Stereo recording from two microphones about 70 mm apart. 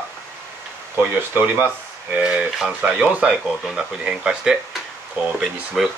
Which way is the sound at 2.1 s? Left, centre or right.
Centre.